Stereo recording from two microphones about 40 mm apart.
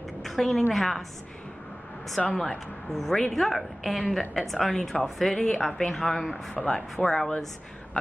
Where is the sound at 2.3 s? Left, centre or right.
Centre.